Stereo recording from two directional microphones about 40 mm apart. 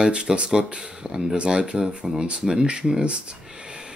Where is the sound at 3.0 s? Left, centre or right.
Right.